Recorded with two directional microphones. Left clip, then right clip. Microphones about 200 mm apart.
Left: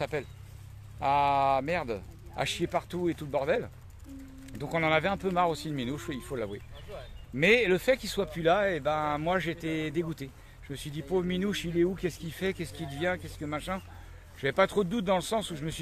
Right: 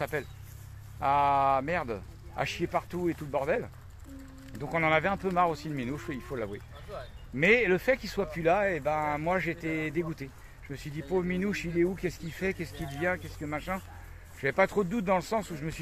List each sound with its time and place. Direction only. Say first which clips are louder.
0.0 s speech: even; 15° left (ahead or behind)